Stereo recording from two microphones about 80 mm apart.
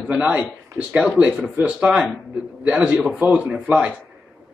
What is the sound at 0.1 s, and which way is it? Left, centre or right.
A man's voice, centre.